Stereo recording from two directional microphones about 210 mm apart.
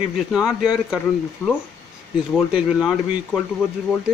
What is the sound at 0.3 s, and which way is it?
Speech, 5° right (ahead or behind).